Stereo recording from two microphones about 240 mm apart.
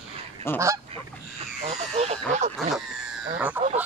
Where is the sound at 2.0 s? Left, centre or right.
Right.